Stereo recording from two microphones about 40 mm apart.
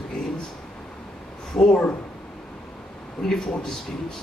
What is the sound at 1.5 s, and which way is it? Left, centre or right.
Speech, left.